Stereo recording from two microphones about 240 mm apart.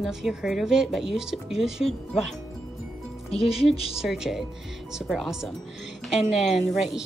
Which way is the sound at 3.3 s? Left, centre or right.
Left.